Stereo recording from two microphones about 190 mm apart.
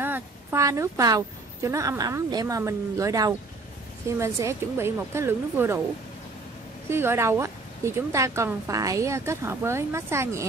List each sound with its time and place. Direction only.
0.0 s a woman's voice: 10° right (ahead or behind)
6.9 s speech: 15° right (ahead or behind)